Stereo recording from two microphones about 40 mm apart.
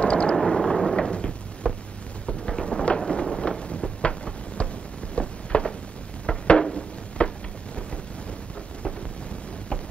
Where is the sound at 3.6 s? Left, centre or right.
Left.